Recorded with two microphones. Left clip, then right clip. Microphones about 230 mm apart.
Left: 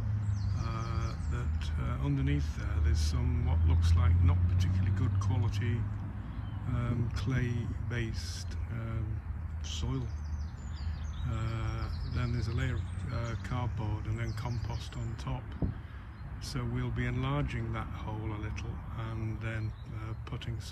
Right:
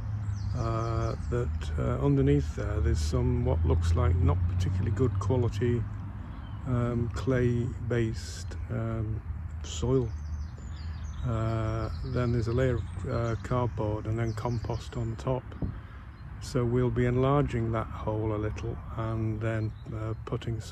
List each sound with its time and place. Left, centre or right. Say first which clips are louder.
0.6 s speech: right 9 dB; centre
11.2 s speech: right 9 dB; centre
15.6 s speech: even; right
16.4 s speech: right 11 dB; centre